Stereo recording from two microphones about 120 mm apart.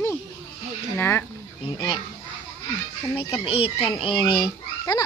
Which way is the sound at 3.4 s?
50° left (ahead or behind).